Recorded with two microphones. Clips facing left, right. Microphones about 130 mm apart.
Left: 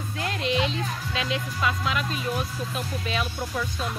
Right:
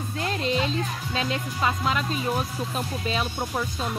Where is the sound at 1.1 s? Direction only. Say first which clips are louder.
Right 2 dB; 35° right (ahead or behind).